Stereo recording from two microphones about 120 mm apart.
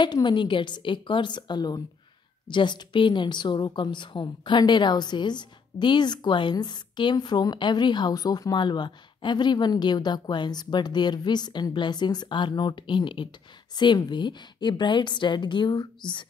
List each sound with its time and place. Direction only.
0.0 s a woman's voice: 40° left (ahead or behind)